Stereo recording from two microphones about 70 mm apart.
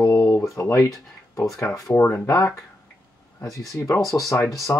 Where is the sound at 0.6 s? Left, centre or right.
Left.